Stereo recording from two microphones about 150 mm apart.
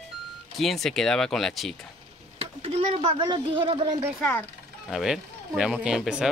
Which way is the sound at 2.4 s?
40° right (ahead or behind).